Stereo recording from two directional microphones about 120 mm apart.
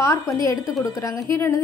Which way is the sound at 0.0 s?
25° left (ahead or behind).